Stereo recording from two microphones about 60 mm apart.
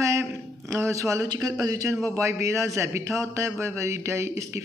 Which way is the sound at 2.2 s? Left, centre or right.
Right.